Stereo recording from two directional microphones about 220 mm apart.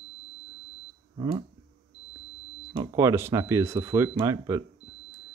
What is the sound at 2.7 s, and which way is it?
Speech, 15° right (ahead or behind).